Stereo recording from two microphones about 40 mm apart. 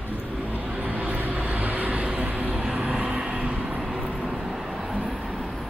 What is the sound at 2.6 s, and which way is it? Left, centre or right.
Vehicle, right.